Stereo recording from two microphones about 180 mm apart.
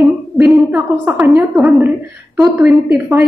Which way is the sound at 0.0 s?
20° right (ahead or behind).